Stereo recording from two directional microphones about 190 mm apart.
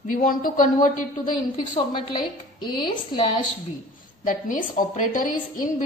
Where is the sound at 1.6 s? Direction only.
25° left (ahead or behind).